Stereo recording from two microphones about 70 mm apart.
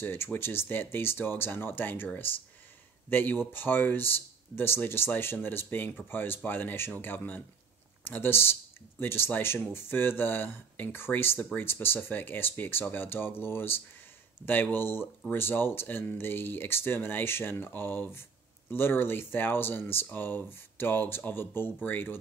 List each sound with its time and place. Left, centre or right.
0.0 s speech: left